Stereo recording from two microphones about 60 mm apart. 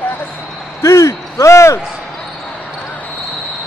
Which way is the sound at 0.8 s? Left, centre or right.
Left.